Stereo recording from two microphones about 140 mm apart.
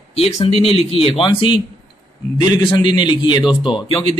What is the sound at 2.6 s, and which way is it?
Speech, 35° left (ahead or behind).